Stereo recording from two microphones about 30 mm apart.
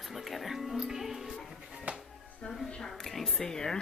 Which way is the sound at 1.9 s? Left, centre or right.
Right.